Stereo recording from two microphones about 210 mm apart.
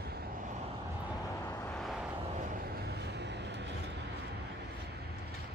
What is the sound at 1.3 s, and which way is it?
Vehicle, 15° left (ahead or behind).